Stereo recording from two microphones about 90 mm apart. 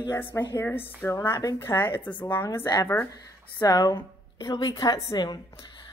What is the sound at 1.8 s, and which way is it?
Speech, 20° left (ahead or behind).